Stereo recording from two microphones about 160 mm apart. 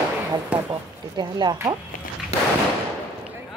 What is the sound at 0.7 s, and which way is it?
Speech, 25° right (ahead or behind).